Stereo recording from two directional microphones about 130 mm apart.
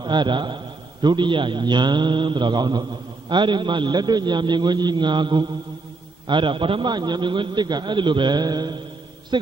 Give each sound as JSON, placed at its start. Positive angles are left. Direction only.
{"t": 0.0, "sound": "a man's voice", "side_deg": -35}